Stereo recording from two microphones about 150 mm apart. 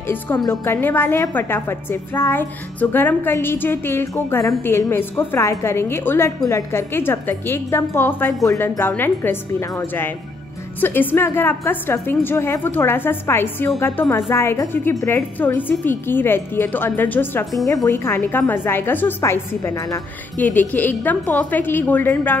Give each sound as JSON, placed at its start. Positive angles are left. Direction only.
{"t": 0.5, "sound": "a woman's voice", "side_deg": 15}